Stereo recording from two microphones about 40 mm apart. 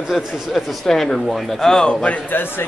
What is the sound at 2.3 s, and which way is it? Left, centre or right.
Speech, left.